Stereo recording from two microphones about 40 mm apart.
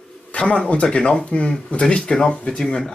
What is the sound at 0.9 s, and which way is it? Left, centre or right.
Speech, left.